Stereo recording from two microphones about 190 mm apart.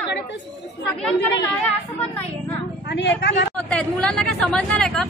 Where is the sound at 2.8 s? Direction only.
65° left (ahead or behind).